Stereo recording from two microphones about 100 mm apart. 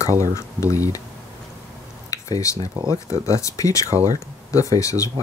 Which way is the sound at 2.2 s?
35° left (ahead or behind).